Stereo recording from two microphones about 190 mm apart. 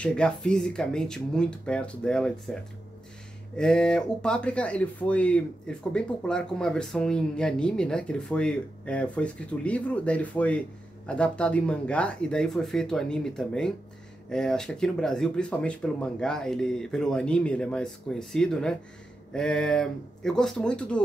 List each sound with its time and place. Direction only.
0.0 s speech: 5° left (ahead or behind)
3.5 s speech: 5° left (ahead or behind)